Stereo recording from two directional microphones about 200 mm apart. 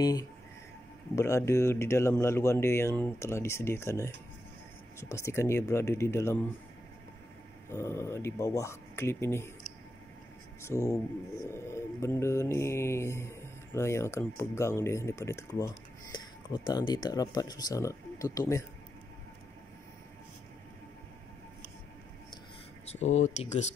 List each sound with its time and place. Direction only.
0.0 s speech: 20° left (ahead or behind)
1.1 s mantra: 15° left (ahead or behind)
7.7 s mantra: 10° left (ahead or behind)
10.6 s mantra: 15° left (ahead or behind)
22.9 s speech: 35° left (ahead or behind)